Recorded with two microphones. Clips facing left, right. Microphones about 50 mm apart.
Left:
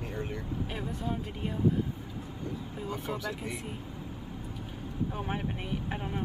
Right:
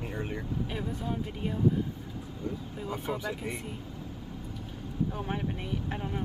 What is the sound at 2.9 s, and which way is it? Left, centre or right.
Speech, centre.